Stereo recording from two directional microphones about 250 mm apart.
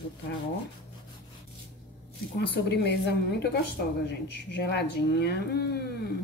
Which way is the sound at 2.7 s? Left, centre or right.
Left.